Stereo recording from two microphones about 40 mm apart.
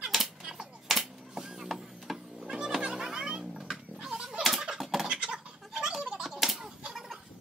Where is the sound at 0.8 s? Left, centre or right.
Centre.